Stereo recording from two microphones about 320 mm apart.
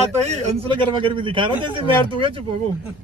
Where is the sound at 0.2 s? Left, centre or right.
Right.